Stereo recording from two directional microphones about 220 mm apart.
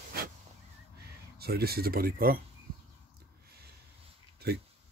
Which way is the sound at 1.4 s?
45° right (ahead or behind).